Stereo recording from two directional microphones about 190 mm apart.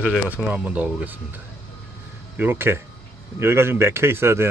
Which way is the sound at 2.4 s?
10° right (ahead or behind).